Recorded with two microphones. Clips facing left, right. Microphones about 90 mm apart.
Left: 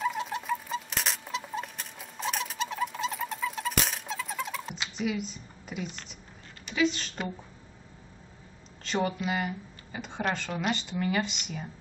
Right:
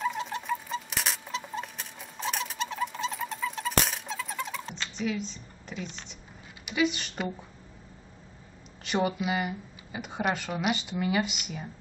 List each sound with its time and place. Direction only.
0.0 s rodents: centre (ahead or behind)
4.7 s speech: 5° left (ahead or behind)
6.6 s speech: 10° right (ahead or behind)
8.8 s speech: 10° right (ahead or behind)